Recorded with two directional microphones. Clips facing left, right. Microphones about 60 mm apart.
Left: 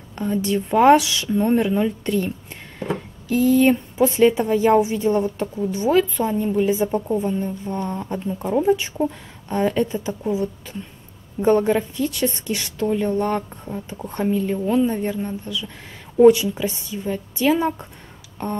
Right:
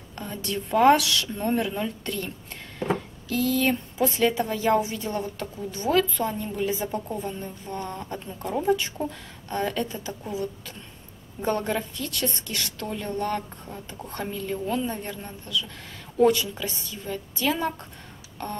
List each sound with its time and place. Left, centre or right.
0.1 s a woman's voice: centre